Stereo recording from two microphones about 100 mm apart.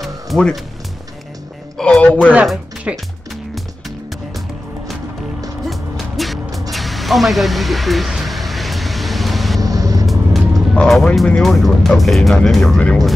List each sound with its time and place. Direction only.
0.0 s music: 5° left (ahead or behind)
1.8 s speech: 10° left (ahead or behind)
2.9 s speech: 10° right (ahead or behind)
5.7 s music: centre (ahead or behind)
6.7 s vehicle: centre (ahead or behind)
9.6 s vehicle: 35° right (ahead or behind)
10.0 s speech: centre (ahead or behind)